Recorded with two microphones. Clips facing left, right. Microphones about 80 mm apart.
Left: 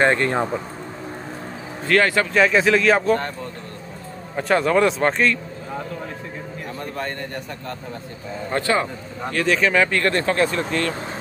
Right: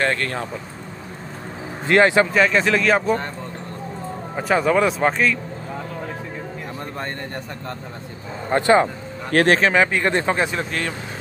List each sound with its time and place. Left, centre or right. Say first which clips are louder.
0.0 s speech: left 4 dB; left
1.9 s speech: right 3 dB; right
2.3 s speech: left 1 dB; centre
4.4 s speech: even; centre
8.5 s speech: right 5 dB; right
9.3 s speech: right 5 dB; right
9.6 s speech: right 1 dB; right
10.6 s speech: left 2 dB; centre